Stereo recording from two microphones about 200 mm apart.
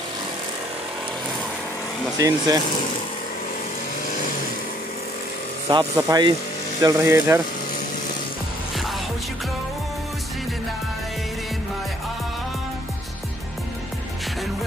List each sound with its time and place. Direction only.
2.1 s speech: 15° right (ahead or behind)
5.7 s speech: 20° right (ahead or behind)